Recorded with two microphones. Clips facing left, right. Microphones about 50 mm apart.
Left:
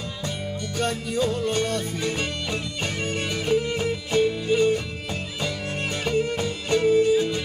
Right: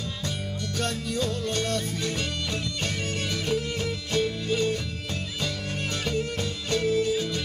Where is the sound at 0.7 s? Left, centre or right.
Centre.